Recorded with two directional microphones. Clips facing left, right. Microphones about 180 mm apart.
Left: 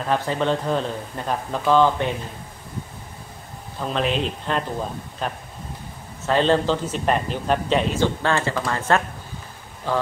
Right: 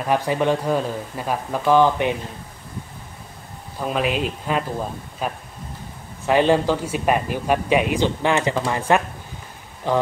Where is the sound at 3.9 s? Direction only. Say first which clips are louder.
Right 1 dB; 10° right (ahead or behind).